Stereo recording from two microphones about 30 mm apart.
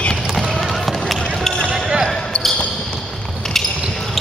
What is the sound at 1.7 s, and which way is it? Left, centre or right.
Basketball bounce, centre.